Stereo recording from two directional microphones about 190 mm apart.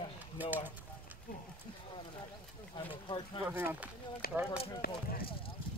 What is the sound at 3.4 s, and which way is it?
Speech, 10° right (ahead or behind).